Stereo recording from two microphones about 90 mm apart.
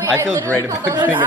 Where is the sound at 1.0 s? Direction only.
25° right (ahead or behind).